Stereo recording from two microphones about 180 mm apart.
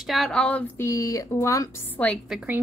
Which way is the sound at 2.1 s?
5° right (ahead or behind).